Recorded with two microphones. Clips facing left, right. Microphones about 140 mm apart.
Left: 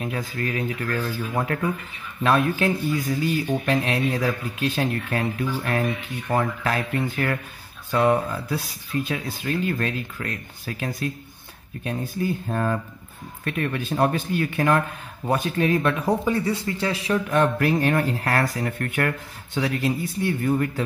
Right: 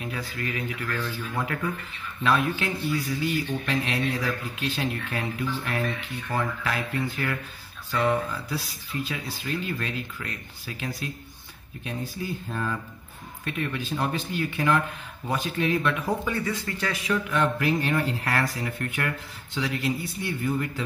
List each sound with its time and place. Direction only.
0.0 s speech: 45° left (ahead or behind)
2.2 s speech: 50° left (ahead or behind); by 17.2 s 30° left (ahead or behind)
17.3 s speech: 50° left (ahead or behind)